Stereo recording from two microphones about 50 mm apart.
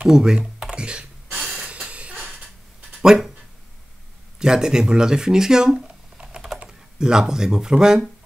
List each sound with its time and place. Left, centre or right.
0.0 s computer keyboard: centre
1.7 s a sound: right
4.4 s speech: centre